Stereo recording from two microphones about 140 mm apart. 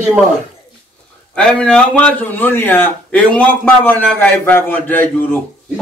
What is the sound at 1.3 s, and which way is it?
Speech, 5° left (ahead or behind).